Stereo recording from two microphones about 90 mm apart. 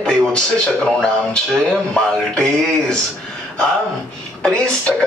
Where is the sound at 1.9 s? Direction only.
5° left (ahead or behind).